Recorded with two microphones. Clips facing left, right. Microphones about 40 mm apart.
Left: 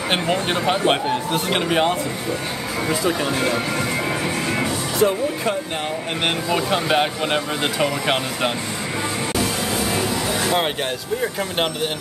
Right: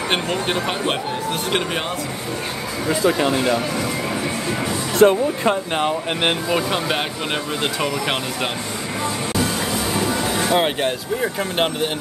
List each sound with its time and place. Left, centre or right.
0.1 s speech: centre
4.9 s speech: right
6.5 s speech: centre
10.5 s speech: centre